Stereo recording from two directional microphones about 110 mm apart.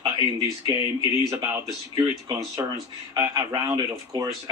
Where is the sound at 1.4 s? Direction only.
35° right (ahead or behind).